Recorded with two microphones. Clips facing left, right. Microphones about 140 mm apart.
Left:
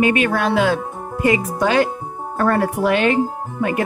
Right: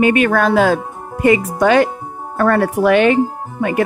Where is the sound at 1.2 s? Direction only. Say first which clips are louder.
Right 5 dB; 60° right (ahead or behind).